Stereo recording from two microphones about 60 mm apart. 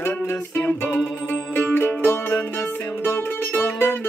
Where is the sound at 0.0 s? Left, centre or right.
Left.